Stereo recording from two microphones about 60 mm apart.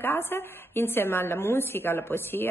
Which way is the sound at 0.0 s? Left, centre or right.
Left.